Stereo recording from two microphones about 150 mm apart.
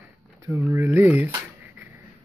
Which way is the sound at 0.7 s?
15° right (ahead or behind).